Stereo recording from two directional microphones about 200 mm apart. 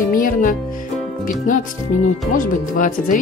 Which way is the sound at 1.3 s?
40° left (ahead or behind).